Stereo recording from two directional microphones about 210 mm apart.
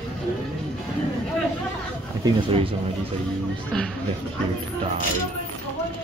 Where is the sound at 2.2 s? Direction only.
25° right (ahead or behind).